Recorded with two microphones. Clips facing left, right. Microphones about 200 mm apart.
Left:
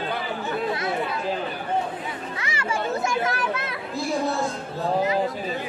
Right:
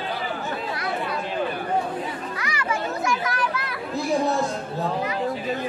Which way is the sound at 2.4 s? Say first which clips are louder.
Even; 25° left (ahead or behind).